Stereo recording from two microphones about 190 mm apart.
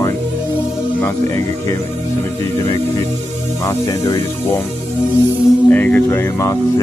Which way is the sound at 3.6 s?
15° left (ahead or behind).